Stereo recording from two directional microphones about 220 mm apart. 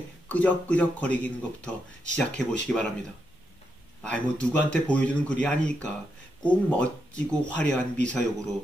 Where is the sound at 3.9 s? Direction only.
5° left (ahead or behind).